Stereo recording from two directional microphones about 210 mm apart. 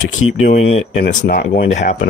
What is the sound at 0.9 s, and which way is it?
Speech, 50° left (ahead or behind).